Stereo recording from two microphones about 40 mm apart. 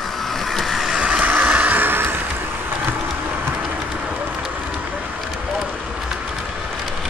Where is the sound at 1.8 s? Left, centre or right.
Right.